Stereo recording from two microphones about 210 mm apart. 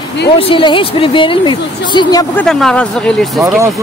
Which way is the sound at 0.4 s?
25° left (ahead or behind).